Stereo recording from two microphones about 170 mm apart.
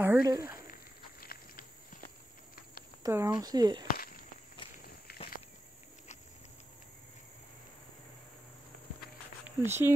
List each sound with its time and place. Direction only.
0.0 s a sound: 10° right (ahead or behind)
0.3 s speech: 20° right (ahead or behind)
1.2 s insect: 60° left (ahead or behind)
3.0 s speech: 20° right (ahead or behind)
3.9 s a sound: 60° left (ahead or behind)
4.8 s walk: 65° left (ahead or behind)
9.6 s speech: 15° right (ahead or behind)